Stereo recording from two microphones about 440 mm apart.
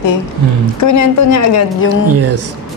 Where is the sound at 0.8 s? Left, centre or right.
Left.